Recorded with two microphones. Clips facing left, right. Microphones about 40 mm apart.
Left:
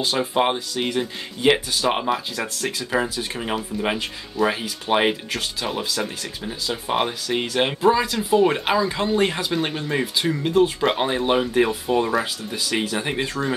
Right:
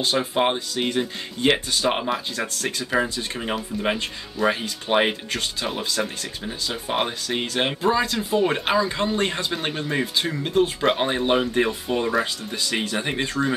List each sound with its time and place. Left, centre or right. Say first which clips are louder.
0.0 s speech: left 1 dB; centre